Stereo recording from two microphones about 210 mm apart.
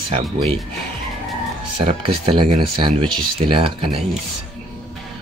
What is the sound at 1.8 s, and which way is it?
Speech, 30° right (ahead or behind).